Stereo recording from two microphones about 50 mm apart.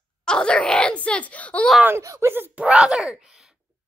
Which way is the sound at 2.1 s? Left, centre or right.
Right.